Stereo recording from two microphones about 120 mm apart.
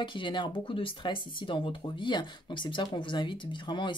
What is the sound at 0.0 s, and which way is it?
Speech, 40° left (ahead or behind).